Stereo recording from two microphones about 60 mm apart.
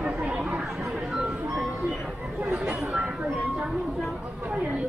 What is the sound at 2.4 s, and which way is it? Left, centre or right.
Chatter, right.